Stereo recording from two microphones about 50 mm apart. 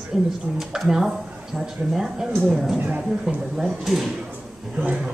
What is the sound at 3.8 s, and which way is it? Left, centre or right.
Speech, centre.